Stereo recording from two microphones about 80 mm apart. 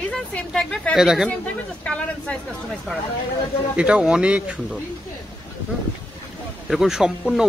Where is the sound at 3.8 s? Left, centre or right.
Centre.